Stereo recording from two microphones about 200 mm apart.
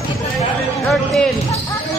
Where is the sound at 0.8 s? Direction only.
Centre (ahead or behind).